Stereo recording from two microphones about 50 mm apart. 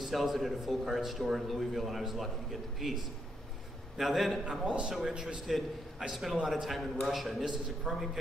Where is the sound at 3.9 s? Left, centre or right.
Centre.